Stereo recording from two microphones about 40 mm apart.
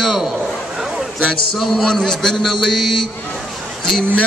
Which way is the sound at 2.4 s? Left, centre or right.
Centre.